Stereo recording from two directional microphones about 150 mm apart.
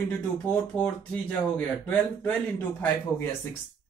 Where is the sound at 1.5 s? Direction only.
10° left (ahead or behind).